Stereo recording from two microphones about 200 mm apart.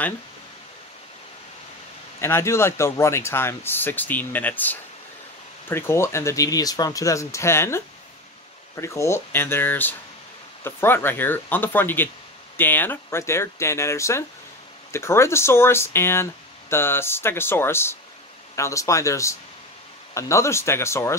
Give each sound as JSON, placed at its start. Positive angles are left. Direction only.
{"t": 2.1, "sound": "speech", "side_deg": 10}